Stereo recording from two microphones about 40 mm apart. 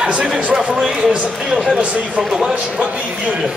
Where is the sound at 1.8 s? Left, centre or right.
Right.